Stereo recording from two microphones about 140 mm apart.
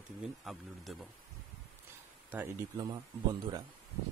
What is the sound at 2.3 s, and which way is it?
Speech, 20° right (ahead or behind).